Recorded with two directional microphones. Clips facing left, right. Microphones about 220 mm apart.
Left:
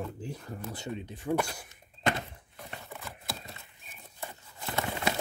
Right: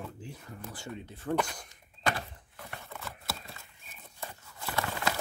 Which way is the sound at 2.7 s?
20° left (ahead or behind).